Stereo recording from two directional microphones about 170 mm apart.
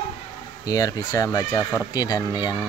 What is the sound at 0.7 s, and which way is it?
Speech, 20° left (ahead or behind).